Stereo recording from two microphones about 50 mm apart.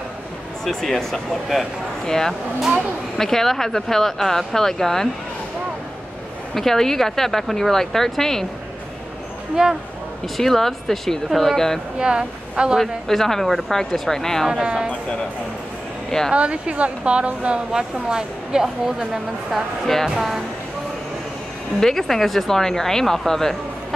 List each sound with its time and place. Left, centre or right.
0.7 s speech: centre
6.5 s speech: centre
9.6 s a woman's voice: centre
10.2 s speech: centre
12.0 s a woman's voice: centre
12.7 s speech: centre
14.5 s speech: centre
16.3 s speech: right
18.0 s a woman's voice: centre
21.7 s speech: centre